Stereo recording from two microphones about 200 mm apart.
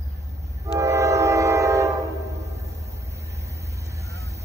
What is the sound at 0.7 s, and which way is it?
Train, 15° right (ahead or behind).